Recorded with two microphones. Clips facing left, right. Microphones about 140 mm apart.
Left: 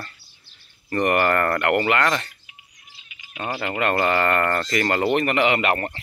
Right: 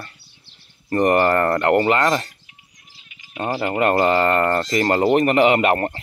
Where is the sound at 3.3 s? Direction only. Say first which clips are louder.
Right 5 dB; 40° right (ahead or behind).